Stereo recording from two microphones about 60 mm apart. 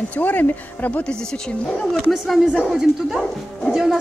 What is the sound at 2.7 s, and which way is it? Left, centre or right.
Speech, centre.